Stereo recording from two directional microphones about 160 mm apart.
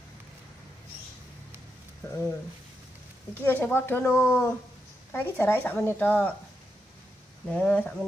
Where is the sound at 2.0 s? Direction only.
15° left (ahead or behind).